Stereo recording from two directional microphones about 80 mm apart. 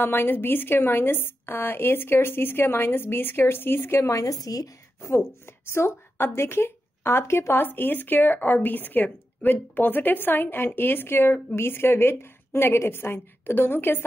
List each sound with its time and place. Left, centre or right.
0.0 s a woman's voice: left
4.1 s a woman's voice: left
5.7 s a woman's voice: left